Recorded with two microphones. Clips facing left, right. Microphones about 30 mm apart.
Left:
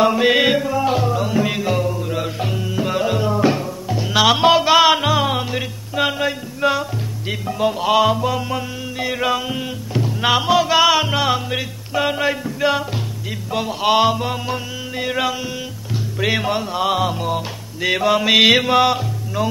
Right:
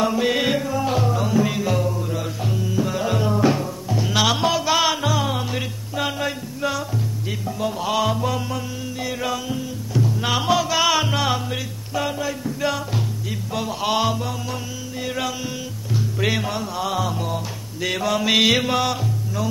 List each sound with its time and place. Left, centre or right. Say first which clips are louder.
0.0 s music: left 5 dB; left
3.0 s music: left 3 dB; centre
4.4 s music: left 7 dB; left; by 8.5 s centre
8.5 s music: left 3 dB; left
10.4 s music: left 4 dB; centre
11.5 s music: left 5 dB; left
16.4 s music: left 6 dB; left
17.2 s music: left 4 dB; centre